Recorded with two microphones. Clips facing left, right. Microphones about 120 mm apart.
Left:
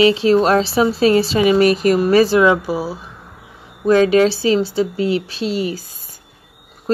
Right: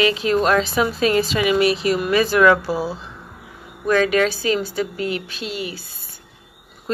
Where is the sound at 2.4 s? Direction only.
15° left (ahead or behind).